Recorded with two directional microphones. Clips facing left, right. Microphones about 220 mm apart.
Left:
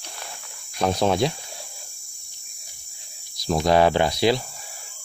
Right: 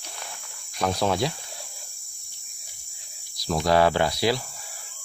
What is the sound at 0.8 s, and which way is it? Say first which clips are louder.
Cricket: left 3 dB; 20° left (ahead or behind).